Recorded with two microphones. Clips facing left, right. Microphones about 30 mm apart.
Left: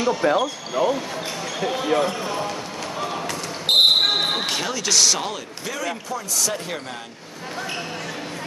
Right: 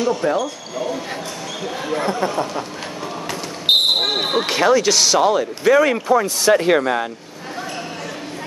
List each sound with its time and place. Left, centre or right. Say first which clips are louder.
0.0 s speech: right 1 dB; centre
0.4 s speech: left 2 dB; left
3.7 s basketball bounce: right 1 dB; centre
4.0 s basketball bounce: right 1 dB; centre
4.5 s speech: right 8 dB; centre
5.7 s speech: right 14 dB; right